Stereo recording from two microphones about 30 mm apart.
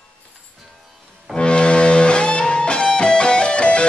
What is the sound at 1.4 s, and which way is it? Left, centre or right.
Music, left.